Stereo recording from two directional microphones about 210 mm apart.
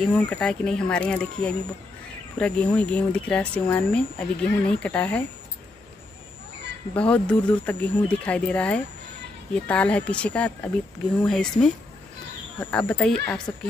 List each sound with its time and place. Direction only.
0.1 s speech: 5° left (ahead or behind)
7.0 s speech: 5° left (ahead or behind)